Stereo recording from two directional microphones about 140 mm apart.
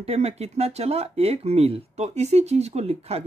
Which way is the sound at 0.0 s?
50° right (ahead or behind).